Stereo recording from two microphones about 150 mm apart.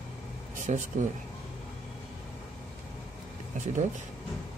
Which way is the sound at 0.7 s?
50° right (ahead or behind).